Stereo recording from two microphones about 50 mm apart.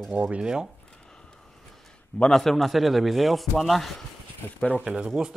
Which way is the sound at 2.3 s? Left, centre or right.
Centre.